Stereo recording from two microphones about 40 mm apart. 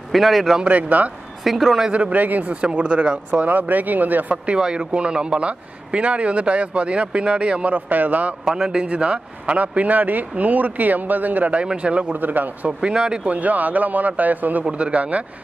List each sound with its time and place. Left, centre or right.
0.1 s a man's voice: centre
0.7 s speech: right
1.4 s a man's voice: centre
1.9 s speech: right
3.4 s speech: right
4.5 s speech: right
7.7 s speech: right
8.8 s speech: right
11.5 s speech: right
12.1 s speech: right
12.9 s speech: right
13.3 s speech: right
14.6 s speech: right